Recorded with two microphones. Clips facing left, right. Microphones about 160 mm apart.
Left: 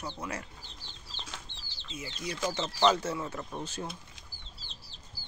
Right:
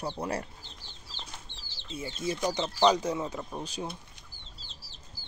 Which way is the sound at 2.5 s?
15° right (ahead or behind).